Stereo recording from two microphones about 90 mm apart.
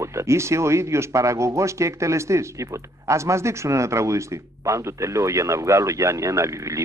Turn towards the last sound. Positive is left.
turn(degrees=-35)  # may be behind; listen again after turning